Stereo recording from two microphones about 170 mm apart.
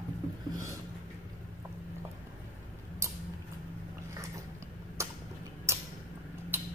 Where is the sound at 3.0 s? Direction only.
20° right (ahead or behind).